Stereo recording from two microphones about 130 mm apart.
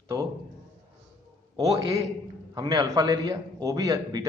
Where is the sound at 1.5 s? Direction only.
30° right (ahead or behind).